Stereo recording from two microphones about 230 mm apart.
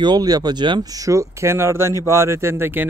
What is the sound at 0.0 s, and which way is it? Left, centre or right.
Speech, centre.